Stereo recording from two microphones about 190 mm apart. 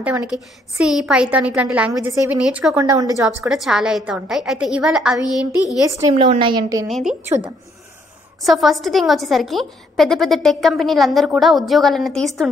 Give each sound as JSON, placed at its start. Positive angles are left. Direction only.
{"t": 0.0, "sound": "a woman's voice", "side_deg": -5}
{"t": 2.8, "sound": "a woman's voice", "side_deg": -20}
{"t": 3.4, "sound": "a woman's voice", "side_deg": 0}
{"t": 5.2, "sound": "a child's voice", "side_deg": 20}
{"t": 5.9, "sound": "a woman's voice", "side_deg": -15}
{"t": 6.9, "sound": "a woman's voice", "side_deg": 0}
{"t": 8.4, "sound": "a woman's voice", "side_deg": 0}